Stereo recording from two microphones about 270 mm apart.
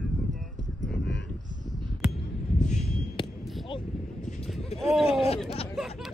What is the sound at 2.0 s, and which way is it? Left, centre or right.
Music, centre.